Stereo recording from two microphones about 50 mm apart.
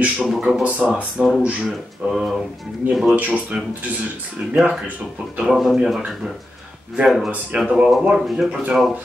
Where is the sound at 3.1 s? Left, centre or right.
Right.